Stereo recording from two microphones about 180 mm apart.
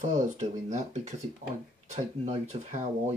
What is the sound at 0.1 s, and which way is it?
Speech, 40° right (ahead or behind).